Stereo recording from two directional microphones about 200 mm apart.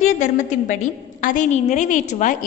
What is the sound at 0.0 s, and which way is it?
A woman's voice, 40° left (ahead or behind).